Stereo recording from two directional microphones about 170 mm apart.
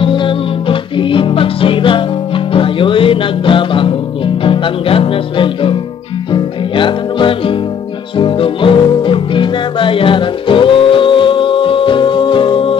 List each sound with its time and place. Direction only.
0.0 s music: 30° left (ahead or behind)